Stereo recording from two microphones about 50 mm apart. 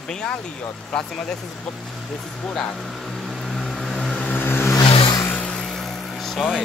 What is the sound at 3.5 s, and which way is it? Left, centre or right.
Vehicle, centre.